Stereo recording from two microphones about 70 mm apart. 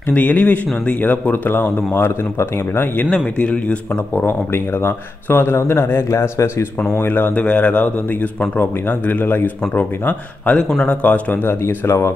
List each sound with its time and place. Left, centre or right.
0.1 s speech: left
3.3 s speech: centre; by 6.5 s left
7.0 s speech: left
11.4 s speech: left